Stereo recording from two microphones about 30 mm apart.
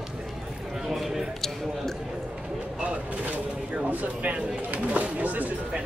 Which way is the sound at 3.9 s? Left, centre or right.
Right.